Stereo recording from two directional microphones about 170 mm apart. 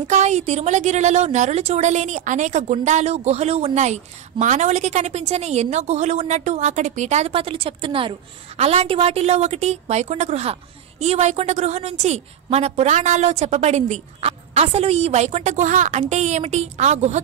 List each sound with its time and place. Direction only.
0.1 s a woman's voice: 40° right (ahead or behind)